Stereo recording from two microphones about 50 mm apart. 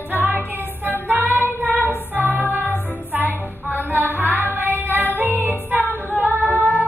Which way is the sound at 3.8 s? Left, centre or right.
Right.